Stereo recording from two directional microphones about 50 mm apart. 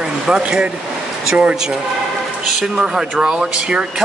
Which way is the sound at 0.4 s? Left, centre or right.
Right.